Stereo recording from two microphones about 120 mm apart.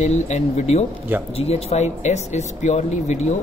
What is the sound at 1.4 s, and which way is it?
A man's voice, 55° left (ahead or behind).